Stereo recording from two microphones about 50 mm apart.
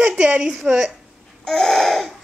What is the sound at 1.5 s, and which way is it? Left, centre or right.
Babbling, centre.